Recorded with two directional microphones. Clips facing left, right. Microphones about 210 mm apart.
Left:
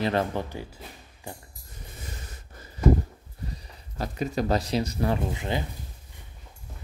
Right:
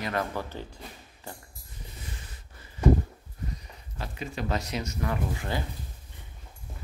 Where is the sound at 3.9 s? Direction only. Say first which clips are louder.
Left 7 dB; 40° left (ahead or behind); by 5.6 s 20° left (ahead or behind).